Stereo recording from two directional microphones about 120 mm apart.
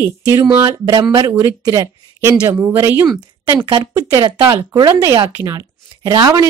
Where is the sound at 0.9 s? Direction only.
40° right (ahead or behind).